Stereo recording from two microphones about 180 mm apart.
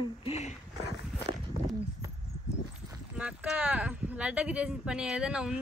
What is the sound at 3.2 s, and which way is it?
A woman's voice, 5° right (ahead or behind).